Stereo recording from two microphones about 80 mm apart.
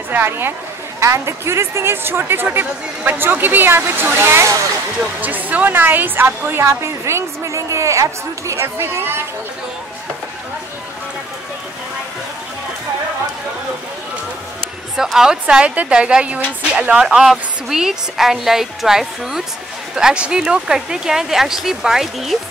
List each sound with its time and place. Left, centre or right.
0.1 s a woman's voice: right
15.0 s a woman's voice: centre